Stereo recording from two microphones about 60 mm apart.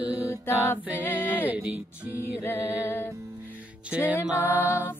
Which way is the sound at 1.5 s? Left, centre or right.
Right.